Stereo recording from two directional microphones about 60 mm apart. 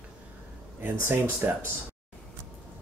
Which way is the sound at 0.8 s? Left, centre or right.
Right.